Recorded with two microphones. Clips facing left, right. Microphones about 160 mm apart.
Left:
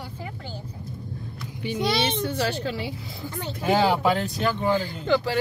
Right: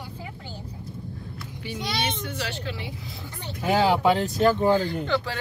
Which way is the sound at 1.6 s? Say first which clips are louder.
Left 5 dB; 25° left (ahead or behind).